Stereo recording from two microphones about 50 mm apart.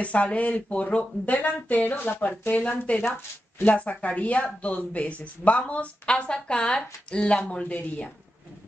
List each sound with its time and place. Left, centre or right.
0.0 s speech: left
2.9 s speech: left